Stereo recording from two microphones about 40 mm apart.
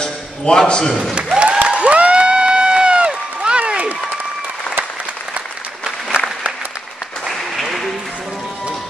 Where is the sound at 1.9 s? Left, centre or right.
Right.